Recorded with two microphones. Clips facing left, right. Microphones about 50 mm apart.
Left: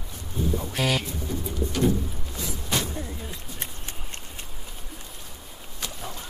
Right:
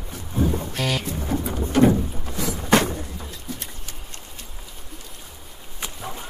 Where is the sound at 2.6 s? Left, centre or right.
Right.